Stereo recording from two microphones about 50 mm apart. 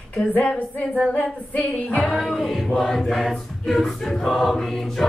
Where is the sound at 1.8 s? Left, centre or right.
Centre.